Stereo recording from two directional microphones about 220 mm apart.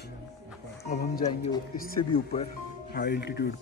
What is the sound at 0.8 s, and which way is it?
Speech, 30° left (ahead or behind).